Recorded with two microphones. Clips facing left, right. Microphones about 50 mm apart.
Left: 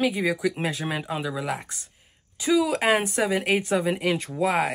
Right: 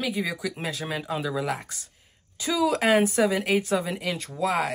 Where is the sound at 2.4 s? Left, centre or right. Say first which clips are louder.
Left 2 dB; centre.